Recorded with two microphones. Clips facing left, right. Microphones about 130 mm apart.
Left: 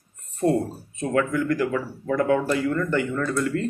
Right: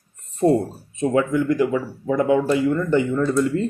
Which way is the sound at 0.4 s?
20° right (ahead or behind).